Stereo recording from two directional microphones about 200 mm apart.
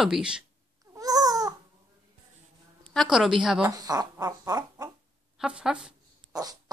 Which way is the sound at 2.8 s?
Centre (ahead or behind).